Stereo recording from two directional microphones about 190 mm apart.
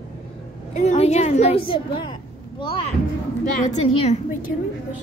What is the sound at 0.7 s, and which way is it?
Speech, 35° left (ahead or behind).